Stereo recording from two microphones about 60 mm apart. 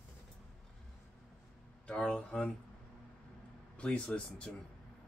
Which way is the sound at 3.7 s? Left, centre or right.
Centre.